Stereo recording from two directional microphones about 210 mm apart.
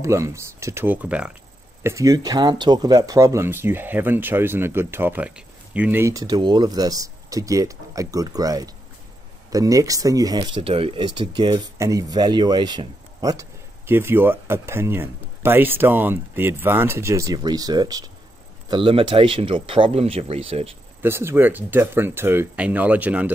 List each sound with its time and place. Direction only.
0.0 s speech: 15° right (ahead or behind)
21.0 s speech: 10° right (ahead or behind)